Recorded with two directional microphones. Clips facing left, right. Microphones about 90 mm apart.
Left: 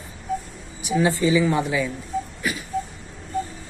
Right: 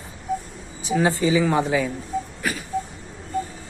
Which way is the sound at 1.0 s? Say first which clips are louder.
Even; 35° right (ahead or behind).